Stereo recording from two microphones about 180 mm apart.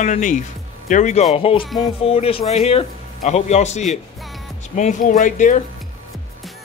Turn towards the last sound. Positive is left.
turn(degrees=45)  # may be behind; listen again after turning